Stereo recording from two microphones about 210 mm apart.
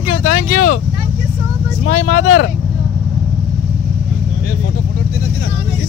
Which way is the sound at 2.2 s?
75° left (ahead or behind).